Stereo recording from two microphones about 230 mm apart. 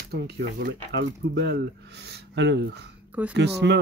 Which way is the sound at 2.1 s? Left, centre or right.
Right.